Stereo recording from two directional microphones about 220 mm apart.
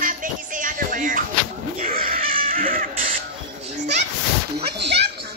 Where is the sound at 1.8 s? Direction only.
40° right (ahead or behind).